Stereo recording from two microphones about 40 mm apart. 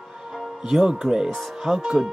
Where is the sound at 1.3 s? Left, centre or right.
Centre.